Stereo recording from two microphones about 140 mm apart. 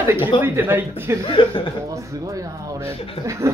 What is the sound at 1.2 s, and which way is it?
Speech, 40° left (ahead or behind).